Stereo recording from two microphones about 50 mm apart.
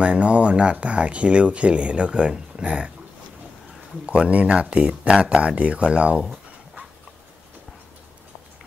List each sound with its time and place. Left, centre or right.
0.0 s speech: right
4.0 s speech: right